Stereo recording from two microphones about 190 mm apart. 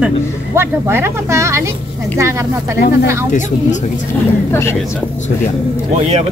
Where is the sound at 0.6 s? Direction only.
10° right (ahead or behind).